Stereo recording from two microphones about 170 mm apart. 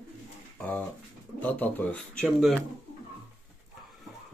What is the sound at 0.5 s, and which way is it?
Pigeon, 10° left (ahead or behind).